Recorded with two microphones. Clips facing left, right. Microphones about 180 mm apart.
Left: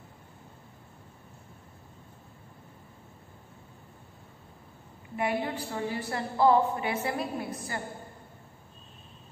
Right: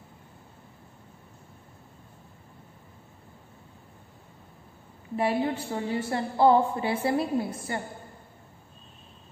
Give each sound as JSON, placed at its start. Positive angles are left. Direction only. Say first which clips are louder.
{"t": 5.1, "sound": "a woman's voice", "louder": "right 4 dB", "side_deg": -30}